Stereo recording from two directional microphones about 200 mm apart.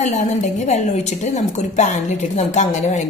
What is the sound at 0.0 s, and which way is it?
A woman's voice, 40° left (ahead or behind).